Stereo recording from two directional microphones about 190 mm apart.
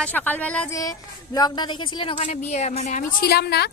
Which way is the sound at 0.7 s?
20° left (ahead or behind).